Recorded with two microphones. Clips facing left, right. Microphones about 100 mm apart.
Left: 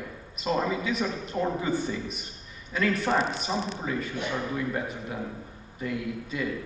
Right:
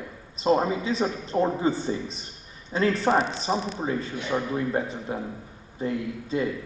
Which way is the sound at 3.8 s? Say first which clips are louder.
Right 2 dB; 30° right (ahead or behind).